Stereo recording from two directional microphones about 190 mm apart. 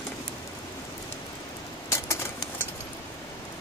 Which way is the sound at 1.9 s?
15° left (ahead or behind).